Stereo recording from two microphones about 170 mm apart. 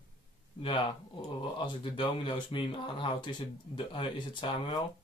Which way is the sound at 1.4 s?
30° left (ahead or behind).